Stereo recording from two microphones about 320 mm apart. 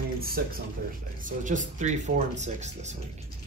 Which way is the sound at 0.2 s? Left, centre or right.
Right.